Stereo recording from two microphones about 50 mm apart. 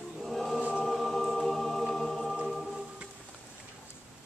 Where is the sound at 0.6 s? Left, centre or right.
Right.